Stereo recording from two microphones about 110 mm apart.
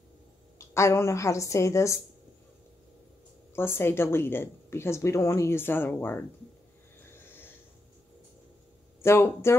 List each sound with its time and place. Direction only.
0.6 s a woman's voice: 25° left (ahead or behind)
3.5 s a woman's voice: 20° left (ahead or behind)
9.0 s a woman's voice: 25° left (ahead or behind)